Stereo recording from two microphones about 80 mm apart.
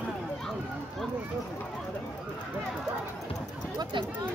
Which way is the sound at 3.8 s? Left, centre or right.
Right.